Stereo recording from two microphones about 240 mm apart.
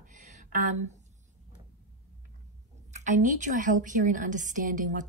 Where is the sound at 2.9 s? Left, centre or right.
Right.